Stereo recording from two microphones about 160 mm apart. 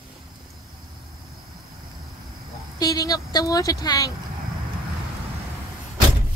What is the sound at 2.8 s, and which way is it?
A woman's voice, 20° left (ahead or behind).